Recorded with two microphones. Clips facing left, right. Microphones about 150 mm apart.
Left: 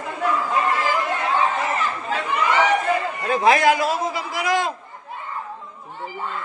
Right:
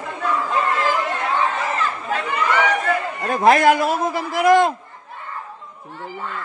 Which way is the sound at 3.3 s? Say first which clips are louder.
Right 2 dB; 50° right (ahead or behind).